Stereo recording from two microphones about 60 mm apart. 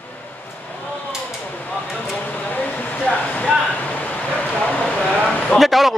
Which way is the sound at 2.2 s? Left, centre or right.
Left.